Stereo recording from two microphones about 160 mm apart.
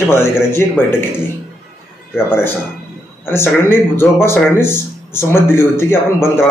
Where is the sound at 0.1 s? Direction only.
15° left (ahead or behind).